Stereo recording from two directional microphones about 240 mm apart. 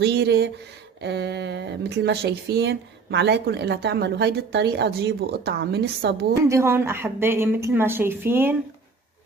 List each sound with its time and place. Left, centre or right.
0.0 s speech: right
6.5 s a woman's voice: centre